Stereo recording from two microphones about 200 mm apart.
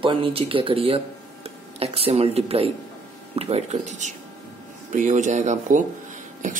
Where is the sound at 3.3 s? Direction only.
30° right (ahead or behind).